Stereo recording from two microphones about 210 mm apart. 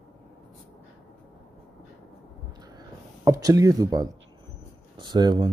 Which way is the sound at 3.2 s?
15° right (ahead or behind).